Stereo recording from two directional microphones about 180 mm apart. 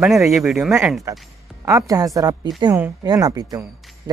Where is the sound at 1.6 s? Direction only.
20° right (ahead or behind).